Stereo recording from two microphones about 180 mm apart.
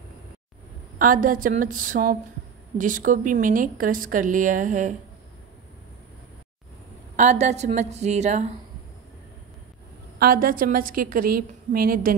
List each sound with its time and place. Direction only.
0.9 s a woman's voice: 50° right (ahead or behind)
7.2 s a woman's voice: 40° right (ahead or behind)
10.1 s a woman's voice: 55° right (ahead or behind)